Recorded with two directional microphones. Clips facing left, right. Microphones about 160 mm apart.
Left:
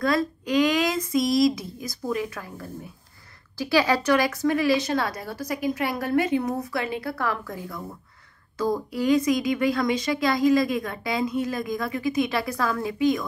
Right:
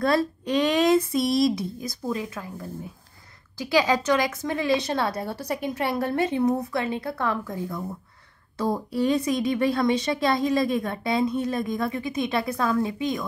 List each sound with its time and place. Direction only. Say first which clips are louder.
0.0 s a woman's voice: right 1 dB; 30° right (ahead or behind)